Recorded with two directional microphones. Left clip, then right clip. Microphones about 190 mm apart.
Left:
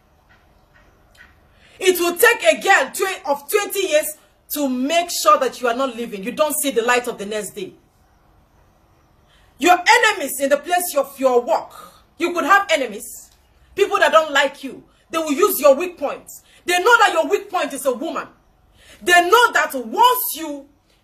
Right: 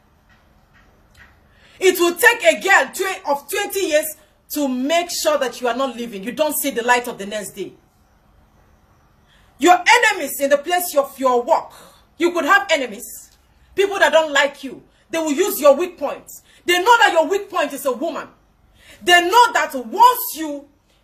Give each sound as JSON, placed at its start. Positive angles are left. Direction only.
{"t": 1.8, "sound": "speech", "side_deg": 15}
{"t": 9.6, "sound": "speech", "side_deg": 15}